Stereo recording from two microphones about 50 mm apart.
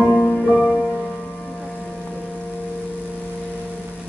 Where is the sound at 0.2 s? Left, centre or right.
Centre.